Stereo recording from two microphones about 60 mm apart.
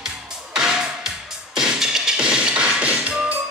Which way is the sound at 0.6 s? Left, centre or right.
Centre.